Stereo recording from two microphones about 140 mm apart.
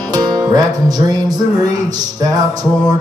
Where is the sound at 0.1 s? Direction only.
25° right (ahead or behind).